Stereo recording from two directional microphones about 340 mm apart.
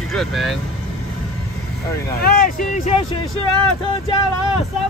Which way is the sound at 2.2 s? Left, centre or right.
Left.